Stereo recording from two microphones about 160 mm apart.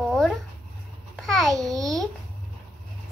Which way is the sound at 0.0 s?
Centre (ahead or behind).